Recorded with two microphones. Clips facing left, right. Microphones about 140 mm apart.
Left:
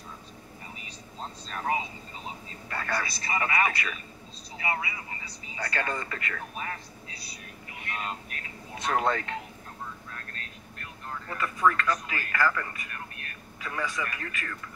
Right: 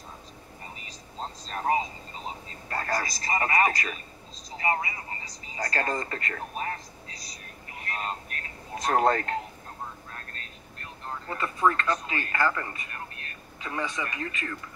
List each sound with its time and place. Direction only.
0.8 s speech: 35° right (ahead or behind)
10.1 s speech: 30° right (ahead or behind)